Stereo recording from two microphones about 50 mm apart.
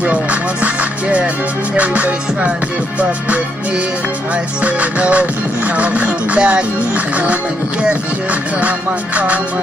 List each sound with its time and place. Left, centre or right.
0.0 s music: right
4.6 s music: right
8.3 s music: right